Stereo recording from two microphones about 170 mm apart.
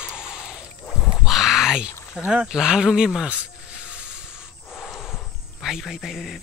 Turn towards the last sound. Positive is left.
turn(degrees=0)  # may be behind; listen again after turning